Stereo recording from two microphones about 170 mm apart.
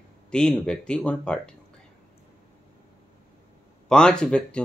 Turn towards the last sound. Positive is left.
turn(degrees=5)  # may be behind; listen again after turning